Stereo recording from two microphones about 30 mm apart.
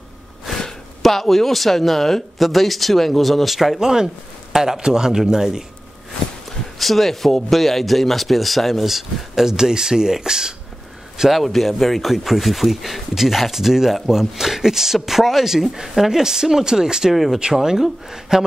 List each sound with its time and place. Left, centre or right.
1.0 s speech: centre
3.8 s speech: centre
6.8 s speech: centre
8.8 s speech: centre
11.3 s speech: centre
17.1 s speech: centre